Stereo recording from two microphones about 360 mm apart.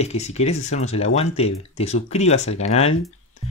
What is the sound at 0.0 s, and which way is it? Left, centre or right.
Speech, centre.